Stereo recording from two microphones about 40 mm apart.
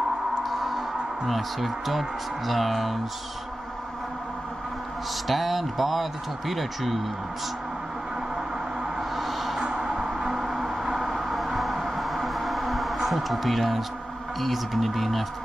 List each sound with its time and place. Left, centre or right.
0.4 s speech: centre
5.3 s a man's voice: centre
8.4 s a sound: centre
9.1 s a sound: centre
9.6 s vehicle: right
9.9 s vehicle: centre
14.4 s a man's voice: centre